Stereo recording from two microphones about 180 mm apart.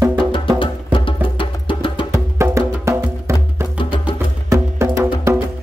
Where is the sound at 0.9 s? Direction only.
30° left (ahead or behind).